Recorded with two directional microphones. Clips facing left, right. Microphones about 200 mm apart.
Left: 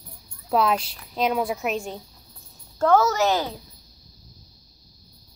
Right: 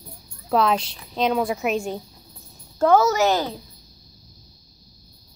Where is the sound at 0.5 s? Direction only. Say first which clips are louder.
Right 1 dB; 5° left (ahead or behind).